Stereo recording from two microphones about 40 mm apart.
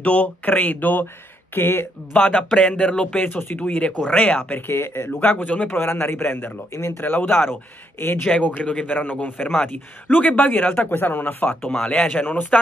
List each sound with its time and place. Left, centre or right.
0.0 s speech: left
1.5 s speech: left
2.1 s speech: left
2.7 s speech: left
3.2 s speech: left
3.5 s speech: left
4.6 s speech: left
5.3 s speech: left
5.7 s a man's voice: left
8.6 s speech: left
8.9 s speech: left
11.8 s speech: left
12.1 s speech: left